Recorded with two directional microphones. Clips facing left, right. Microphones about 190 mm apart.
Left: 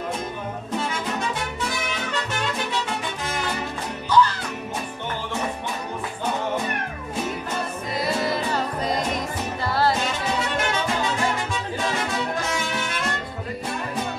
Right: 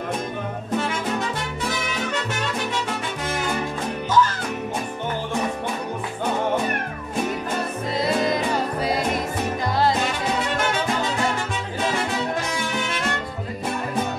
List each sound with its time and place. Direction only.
4.1 s music: 45° right (ahead or behind)
8.0 s music: 20° right (ahead or behind)